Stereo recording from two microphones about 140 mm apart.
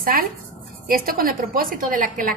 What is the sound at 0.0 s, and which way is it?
A woman's voice, 90° right.